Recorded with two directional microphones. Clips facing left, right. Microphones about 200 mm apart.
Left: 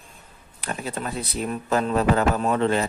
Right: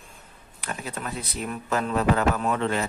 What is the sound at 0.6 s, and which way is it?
A man's voice, 35° left (ahead or behind).